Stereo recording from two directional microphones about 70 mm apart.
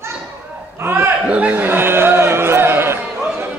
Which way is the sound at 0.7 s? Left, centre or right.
Right.